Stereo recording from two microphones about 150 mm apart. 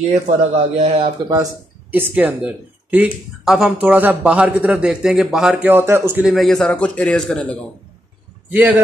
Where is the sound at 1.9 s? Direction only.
10° right (ahead or behind).